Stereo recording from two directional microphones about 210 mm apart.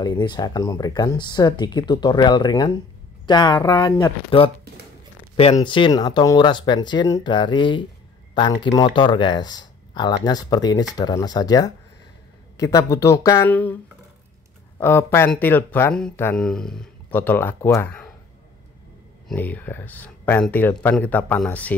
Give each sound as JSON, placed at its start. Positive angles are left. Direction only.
{"t": 0.0, "sound": "speech", "side_deg": 20}
{"t": 14.8, "sound": "speech", "side_deg": 10}
{"t": 19.2, "sound": "speech", "side_deg": 10}